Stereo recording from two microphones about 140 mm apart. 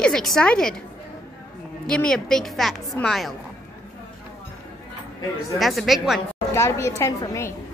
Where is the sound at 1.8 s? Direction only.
5° left (ahead or behind).